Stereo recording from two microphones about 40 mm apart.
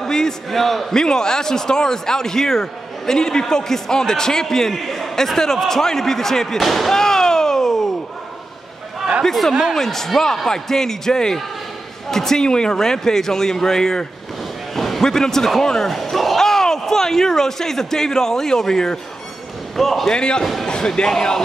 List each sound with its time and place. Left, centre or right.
0.0 s a sound: centre
0.5 s a man's voice: centre
0.9 s a man's voice: centre
7.0 s a sound: centre
9.2 s a man's voice: centre
20.1 s speech: centre